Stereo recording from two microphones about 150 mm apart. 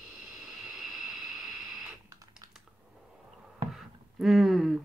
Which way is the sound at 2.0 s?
20° right (ahead or behind).